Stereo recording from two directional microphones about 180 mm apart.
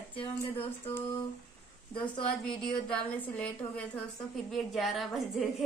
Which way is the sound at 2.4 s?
5° left (ahead or behind).